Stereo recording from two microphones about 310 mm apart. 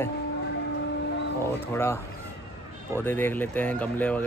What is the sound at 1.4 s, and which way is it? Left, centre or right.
Speech, centre.